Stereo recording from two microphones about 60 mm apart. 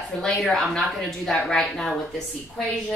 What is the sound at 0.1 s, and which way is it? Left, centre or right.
Speech, centre.